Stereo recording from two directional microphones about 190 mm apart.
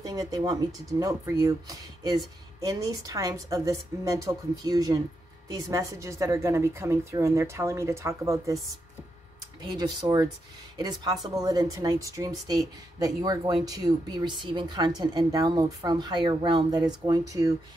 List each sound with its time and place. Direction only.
0.0 s a woman's voice: 20° right (ahead or behind)
9.6 s a woman's voice: 25° right (ahead or behind)